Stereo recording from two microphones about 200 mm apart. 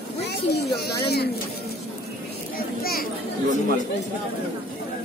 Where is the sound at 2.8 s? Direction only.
50° left (ahead or behind).